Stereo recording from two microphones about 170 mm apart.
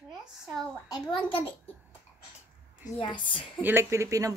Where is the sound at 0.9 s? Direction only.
30° left (ahead or behind).